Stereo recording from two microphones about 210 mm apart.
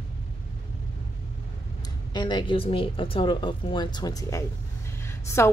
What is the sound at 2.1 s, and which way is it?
A woman's voice, 20° left (ahead or behind).